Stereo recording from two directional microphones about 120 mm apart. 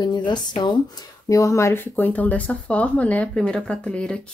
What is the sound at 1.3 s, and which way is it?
Speech, 25° left (ahead or behind).